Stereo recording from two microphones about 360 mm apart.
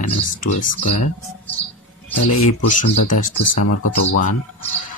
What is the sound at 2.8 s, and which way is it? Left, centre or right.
Speech, left.